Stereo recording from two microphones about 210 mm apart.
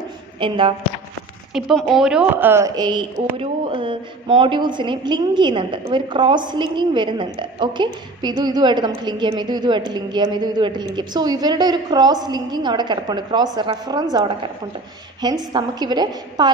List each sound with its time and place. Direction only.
0.4 s a woman's voice: 25° right (ahead or behind)
1.5 s a woman's voice: centre (ahead or behind); by 14.5 s 20° right (ahead or behind)
15.5 s a woman's voice: 20° right (ahead or behind)